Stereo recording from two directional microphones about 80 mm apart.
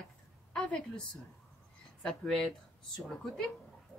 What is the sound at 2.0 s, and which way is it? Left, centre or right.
Speech, centre.